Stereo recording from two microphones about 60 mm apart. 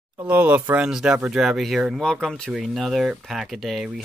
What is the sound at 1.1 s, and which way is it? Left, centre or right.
Speech, right.